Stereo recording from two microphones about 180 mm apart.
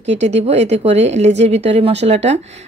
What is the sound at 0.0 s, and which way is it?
A woman's voice, 40° right (ahead or behind).